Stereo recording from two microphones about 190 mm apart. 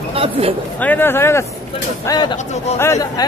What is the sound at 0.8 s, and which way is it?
Speech, 10° left (ahead or behind).